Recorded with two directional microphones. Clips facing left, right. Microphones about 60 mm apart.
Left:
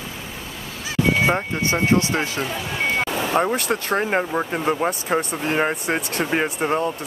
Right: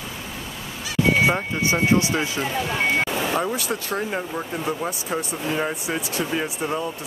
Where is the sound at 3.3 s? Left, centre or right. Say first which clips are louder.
Left 4 dB; left.